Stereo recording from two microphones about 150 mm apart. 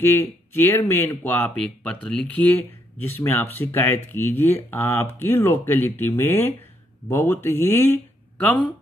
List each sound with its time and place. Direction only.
0.0 s speech: 15° left (ahead or behind)